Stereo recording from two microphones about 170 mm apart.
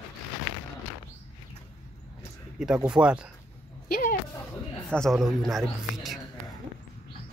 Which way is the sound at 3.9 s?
55° left (ahead or behind).